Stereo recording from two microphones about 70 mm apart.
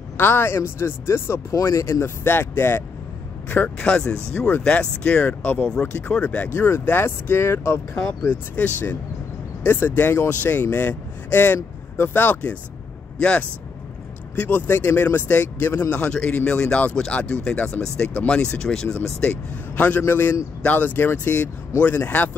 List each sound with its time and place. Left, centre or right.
0.2 s speech: left
3.4 s speech: left
6.5 s speech: left
8.3 s speech: left
15.9 s a man's voice: centre
20.0 s speech: left